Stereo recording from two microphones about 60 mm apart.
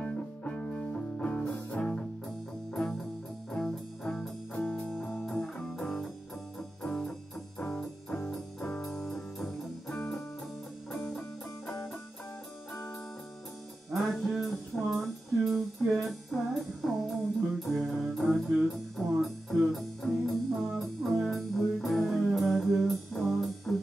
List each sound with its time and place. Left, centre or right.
0.0 s music: centre
6.8 s music: centre
8.9 s music: centre
14.0 s music: centre